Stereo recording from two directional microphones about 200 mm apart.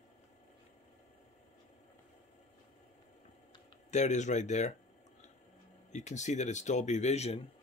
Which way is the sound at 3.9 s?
35° left (ahead or behind).